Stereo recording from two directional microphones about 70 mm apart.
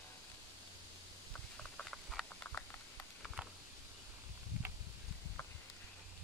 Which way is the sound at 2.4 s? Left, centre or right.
Left.